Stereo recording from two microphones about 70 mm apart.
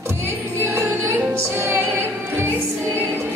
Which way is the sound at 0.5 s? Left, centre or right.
Right.